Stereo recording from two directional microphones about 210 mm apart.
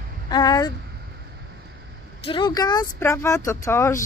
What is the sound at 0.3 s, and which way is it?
Speech, 20° left (ahead or behind).